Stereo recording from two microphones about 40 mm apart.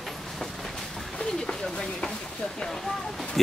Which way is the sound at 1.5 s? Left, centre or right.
Centre.